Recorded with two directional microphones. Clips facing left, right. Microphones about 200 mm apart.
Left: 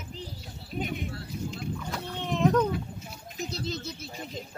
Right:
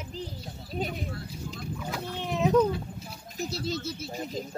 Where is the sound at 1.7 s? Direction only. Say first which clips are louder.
Right 1 dB; 5° right (ahead or behind).